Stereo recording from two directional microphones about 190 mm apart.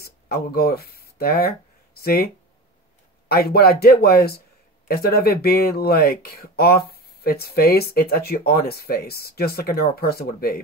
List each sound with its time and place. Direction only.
0.0 s speech: 55° left (ahead or behind)
3.3 s speech: 55° left (ahead or behind)